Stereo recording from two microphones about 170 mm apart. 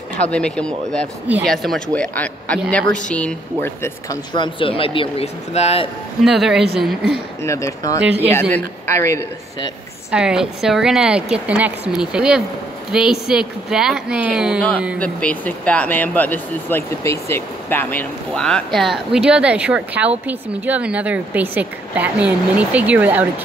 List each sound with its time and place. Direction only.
0.3 s speech: 5° left (ahead or behind)
4.3 s speech: 30° left (ahead or behind)
6.2 s speech: centre (ahead or behind)
7.4 s speech: 20° left (ahead or behind)
8.0 s speech: 10° right (ahead or behind)
8.3 s speech: 10° left (ahead or behind)
10.1 s speech: 5° right (ahead or behind)
15.0 s speech: 10° left (ahead or behind); by 23.2 s 10° right (ahead or behind)